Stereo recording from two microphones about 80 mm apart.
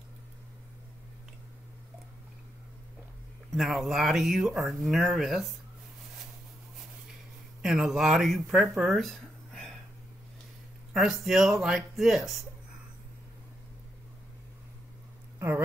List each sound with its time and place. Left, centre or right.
3.5 s speech: centre
7.6 s speech: centre
10.9 s speech: centre
15.3 s a sound: right